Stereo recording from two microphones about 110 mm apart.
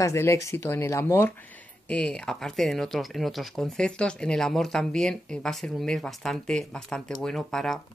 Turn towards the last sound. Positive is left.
turn(degrees=5)  # may be behind; listen again after turning